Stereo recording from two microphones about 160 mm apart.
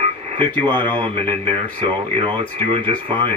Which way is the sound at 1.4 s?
30° right (ahead or behind).